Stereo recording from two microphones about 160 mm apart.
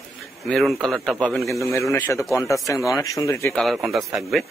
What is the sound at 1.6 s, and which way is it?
A man's voice, 20° left (ahead or behind).